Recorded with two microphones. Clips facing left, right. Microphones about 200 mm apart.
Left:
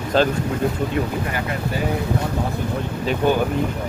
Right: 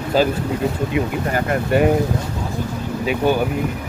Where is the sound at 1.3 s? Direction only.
60° right (ahead or behind).